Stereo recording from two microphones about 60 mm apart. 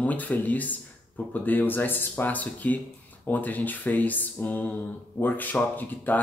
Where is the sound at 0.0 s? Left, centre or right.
Left.